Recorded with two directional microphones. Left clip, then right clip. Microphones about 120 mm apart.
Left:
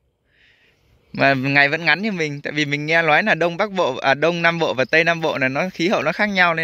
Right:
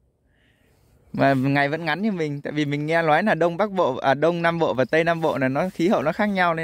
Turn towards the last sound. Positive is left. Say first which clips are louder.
# left 4 dB
turn(degrees=-35)  # may be behind; listen again after turning